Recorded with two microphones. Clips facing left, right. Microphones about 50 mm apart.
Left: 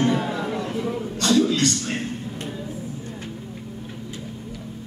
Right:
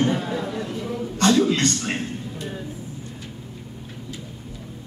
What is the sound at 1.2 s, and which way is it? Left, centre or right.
Speech, right.